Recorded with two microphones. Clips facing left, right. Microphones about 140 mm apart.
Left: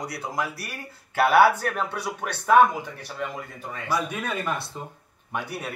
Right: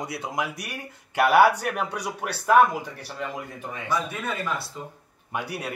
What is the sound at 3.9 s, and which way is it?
Speech, 15° left (ahead or behind).